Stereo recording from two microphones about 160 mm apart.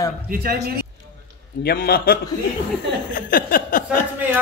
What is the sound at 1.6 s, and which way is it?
Speech, 80° left.